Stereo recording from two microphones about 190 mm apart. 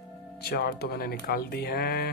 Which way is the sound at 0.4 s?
55° left (ahead or behind).